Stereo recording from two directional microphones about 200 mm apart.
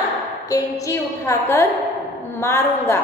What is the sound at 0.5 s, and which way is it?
A woman's voice, 15° left (ahead or behind).